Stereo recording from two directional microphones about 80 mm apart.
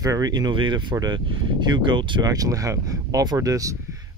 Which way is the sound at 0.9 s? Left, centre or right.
Right.